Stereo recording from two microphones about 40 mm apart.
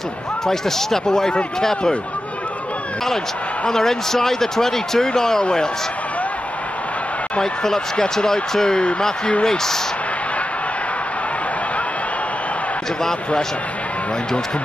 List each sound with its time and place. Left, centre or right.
0.5 s speech: centre
3.7 s speech: centre
7.6 s speech: centre